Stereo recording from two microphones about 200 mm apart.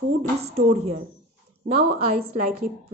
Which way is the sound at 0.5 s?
30° right (ahead or behind).